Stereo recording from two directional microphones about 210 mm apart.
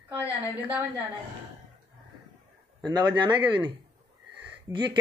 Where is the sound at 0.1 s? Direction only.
10° right (ahead or behind).